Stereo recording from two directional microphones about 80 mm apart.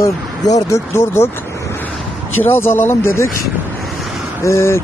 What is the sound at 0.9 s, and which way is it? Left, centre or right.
Speech, left.